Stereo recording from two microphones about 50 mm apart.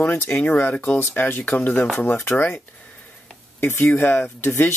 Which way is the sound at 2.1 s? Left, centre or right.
Left.